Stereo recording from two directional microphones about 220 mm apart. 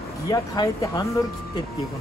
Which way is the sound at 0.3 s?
15° left (ahead or behind).